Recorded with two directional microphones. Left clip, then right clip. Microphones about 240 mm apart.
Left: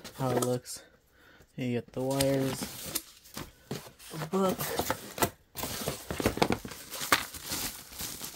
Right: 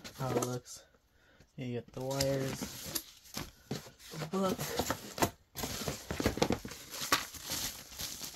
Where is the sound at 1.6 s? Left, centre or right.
Left.